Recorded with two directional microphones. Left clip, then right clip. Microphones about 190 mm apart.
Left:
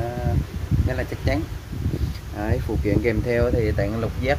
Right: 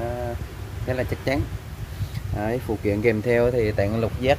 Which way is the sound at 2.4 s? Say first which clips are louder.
Right 1 dB; 20° right (ahead or behind).